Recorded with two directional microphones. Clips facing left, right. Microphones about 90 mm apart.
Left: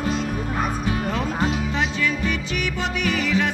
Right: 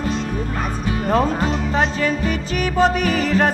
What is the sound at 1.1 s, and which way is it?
Music, 40° right (ahead or behind).